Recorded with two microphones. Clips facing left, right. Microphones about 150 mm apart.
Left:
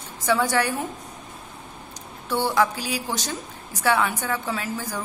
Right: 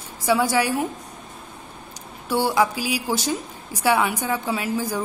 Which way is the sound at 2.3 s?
10° right (ahead or behind).